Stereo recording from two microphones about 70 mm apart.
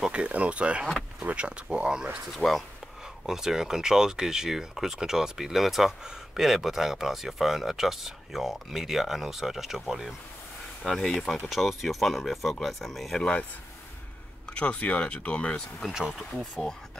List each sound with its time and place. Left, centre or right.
0.0 s speech: centre
2.3 s speech: centre
13.2 s speech: centre
14.5 s speech: centre
15.9 s speech: centre
16.5 s speech: centre